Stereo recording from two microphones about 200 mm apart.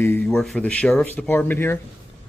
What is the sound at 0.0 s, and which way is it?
Speech, 10° left (ahead or behind).